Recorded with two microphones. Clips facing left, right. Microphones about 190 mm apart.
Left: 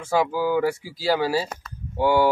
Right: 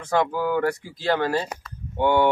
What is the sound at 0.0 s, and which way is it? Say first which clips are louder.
Speech: left 1 dB; 5° left (ahead or behind).